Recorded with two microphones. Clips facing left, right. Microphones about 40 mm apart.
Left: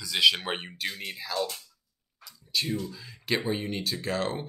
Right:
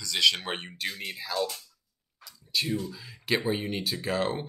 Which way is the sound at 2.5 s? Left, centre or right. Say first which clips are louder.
Right 1 dB; centre.